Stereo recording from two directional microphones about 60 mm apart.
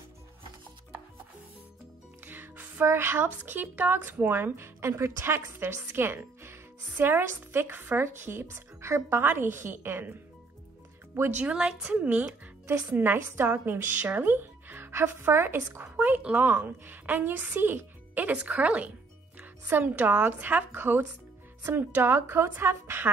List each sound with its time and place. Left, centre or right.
2.2 s music: right
2.9 s speech: right
11.1 s speech: right
11.8 s a woman's voice: right
12.6 s speech: right
15.8 s a woman's voice: right
16.4 s speech: right